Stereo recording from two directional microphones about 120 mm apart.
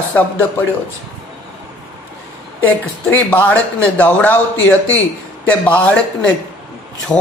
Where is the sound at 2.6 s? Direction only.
15° left (ahead or behind).